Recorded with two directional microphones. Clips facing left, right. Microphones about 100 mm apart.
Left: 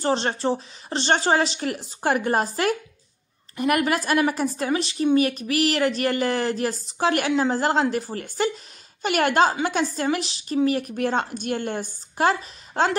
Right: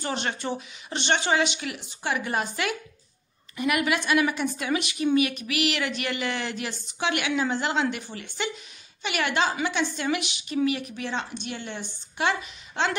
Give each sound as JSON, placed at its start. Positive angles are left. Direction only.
{"t": 0.0, "sound": "a woman's voice", "side_deg": 35}